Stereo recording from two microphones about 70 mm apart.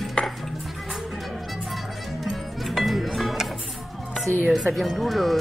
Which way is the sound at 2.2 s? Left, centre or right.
Centre.